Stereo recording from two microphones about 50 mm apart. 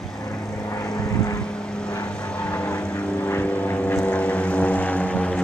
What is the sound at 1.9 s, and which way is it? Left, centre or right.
Vehicle, left.